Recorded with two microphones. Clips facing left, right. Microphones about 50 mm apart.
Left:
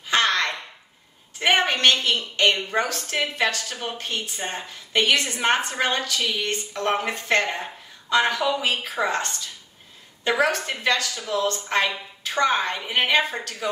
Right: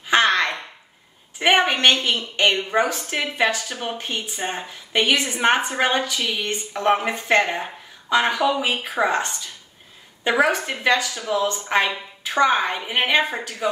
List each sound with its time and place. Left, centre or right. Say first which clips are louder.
0.0 s a sound: right 3 dB; centre
1.4 s a woman's voice: right 2 dB; centre
8.5 s a woman's voice: right 2 dB; centre